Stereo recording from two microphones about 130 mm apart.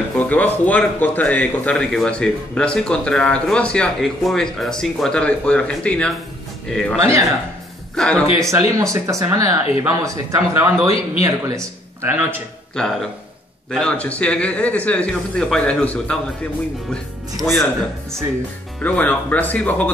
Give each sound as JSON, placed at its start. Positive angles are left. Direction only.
{"t": 0.2, "sound": "speech", "side_deg": 10}
{"t": 7.0, "sound": "speech", "side_deg": -20}
{"t": 7.9, "sound": "speech", "side_deg": 5}
{"t": 8.3, "sound": "speech", "side_deg": -20}
{"t": 13.7, "sound": "speech", "side_deg": 5}
{"t": 18.8, "sound": "speech", "side_deg": 10}